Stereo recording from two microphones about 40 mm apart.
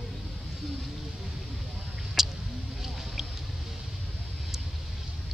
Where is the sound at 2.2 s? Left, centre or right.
Centre.